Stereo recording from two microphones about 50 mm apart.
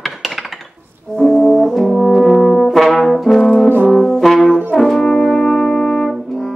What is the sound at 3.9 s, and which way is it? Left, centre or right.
Brass instrument, centre.